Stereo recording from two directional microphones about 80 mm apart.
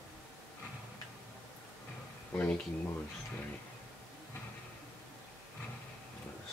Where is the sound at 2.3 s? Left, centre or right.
Left.